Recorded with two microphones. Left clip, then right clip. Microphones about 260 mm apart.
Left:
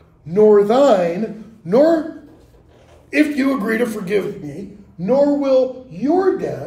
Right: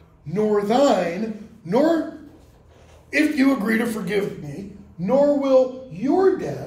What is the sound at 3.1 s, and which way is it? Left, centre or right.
A man's voice, centre.